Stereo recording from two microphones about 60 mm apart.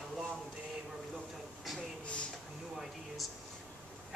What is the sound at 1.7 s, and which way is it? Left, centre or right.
Speech, centre.